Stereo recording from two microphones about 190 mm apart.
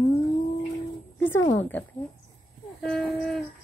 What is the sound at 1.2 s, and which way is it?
Speech, 15° left (ahead or behind).